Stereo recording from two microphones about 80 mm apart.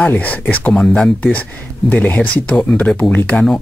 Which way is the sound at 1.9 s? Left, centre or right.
Centre.